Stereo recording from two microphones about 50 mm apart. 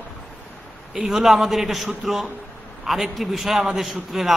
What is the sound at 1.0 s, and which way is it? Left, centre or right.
A man's voice, centre.